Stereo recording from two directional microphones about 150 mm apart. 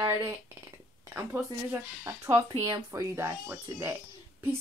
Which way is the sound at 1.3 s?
15° right (ahead or behind).